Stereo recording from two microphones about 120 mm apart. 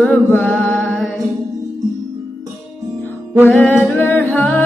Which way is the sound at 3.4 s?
15° left (ahead or behind).